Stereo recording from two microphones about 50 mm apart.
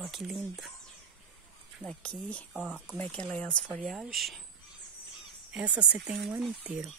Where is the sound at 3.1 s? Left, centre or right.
Left.